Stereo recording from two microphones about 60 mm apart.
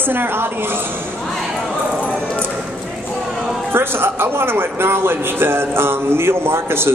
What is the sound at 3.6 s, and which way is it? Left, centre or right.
A man's voice, right.